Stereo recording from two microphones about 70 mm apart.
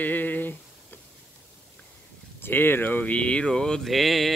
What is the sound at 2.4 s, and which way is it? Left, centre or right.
Speech, left.